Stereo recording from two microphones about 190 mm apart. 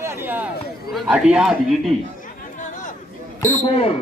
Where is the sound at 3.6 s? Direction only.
30° left (ahead or behind).